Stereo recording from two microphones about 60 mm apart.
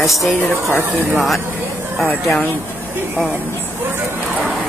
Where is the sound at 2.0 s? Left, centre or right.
Centre.